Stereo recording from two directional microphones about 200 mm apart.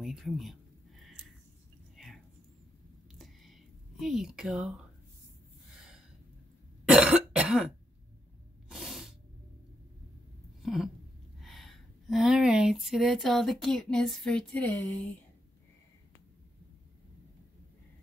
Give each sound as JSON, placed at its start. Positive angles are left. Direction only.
{"t": 0.0, "sound": "a sound", "side_deg": 0}
{"t": 4.0, "sound": "speech", "side_deg": 0}
{"t": 6.9, "sound": "cough", "side_deg": -5}
{"t": 8.6, "sound": "spray", "side_deg": 0}
{"t": 10.6, "sound": "a sound", "side_deg": 0}
{"t": 11.4, "sound": "speech", "side_deg": 0}